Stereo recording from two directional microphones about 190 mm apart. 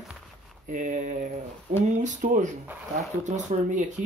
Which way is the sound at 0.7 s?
45° right (ahead or behind).